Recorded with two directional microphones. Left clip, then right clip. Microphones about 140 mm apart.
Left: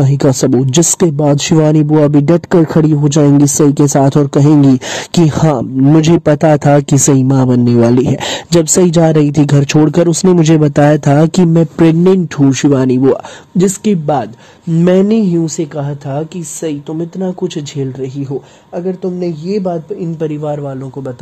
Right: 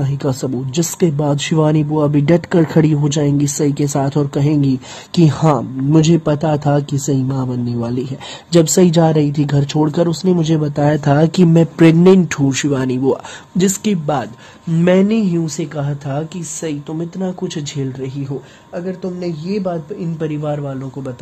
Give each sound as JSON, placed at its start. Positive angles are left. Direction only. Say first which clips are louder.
{"t": 0.0, "sound": "speech", "louder": "left 9 dB", "side_deg": 55}
{"t": 11.5, "sound": "a man's voice", "louder": "right 1 dB", "side_deg": 45}
{"t": 13.6, "sound": "speech", "louder": "left 5 dB", "side_deg": 25}
{"t": 14.9, "sound": "a man's voice", "louder": "left 3 dB", "side_deg": 50}
{"t": 18.8, "sound": "a man's voice", "louder": "left 6 dB", "side_deg": 60}